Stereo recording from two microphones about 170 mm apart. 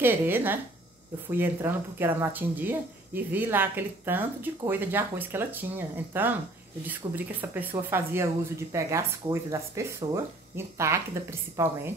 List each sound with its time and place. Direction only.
0.0 s speech: 10° right (ahead or behind)